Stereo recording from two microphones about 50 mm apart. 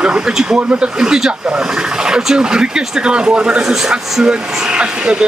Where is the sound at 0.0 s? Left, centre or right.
Centre.